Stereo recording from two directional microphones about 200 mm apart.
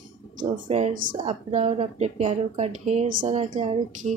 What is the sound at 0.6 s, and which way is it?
Speech, 30° right (ahead or behind).